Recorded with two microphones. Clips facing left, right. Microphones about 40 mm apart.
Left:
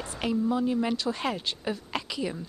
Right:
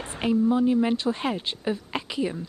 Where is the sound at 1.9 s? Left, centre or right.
Right.